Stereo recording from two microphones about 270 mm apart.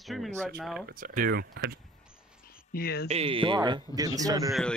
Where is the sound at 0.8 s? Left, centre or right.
Right.